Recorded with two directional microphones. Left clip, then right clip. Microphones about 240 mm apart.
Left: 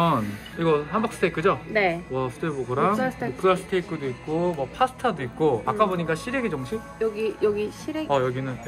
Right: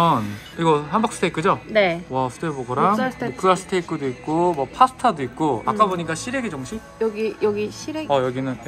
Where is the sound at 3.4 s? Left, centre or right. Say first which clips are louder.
Right 3 dB; centre.